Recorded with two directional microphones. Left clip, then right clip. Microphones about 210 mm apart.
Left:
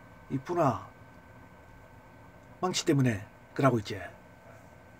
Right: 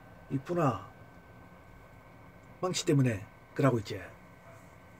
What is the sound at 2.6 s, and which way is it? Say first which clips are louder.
Speech: left 2 dB; 30° left (ahead or behind).